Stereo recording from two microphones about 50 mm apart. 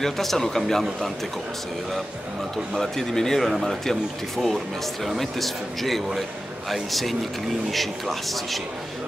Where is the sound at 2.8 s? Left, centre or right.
Centre.